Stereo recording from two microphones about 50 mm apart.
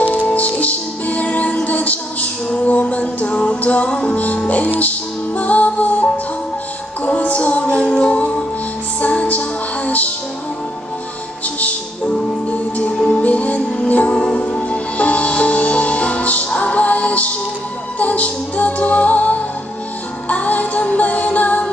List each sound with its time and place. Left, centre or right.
0.0 s music: left
4.7 s music: left
7.1 s music: left
12.4 s music: left
14.1 s music: centre
14.4 s music: left